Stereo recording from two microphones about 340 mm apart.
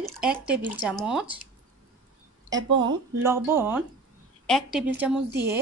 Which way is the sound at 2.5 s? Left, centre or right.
Right.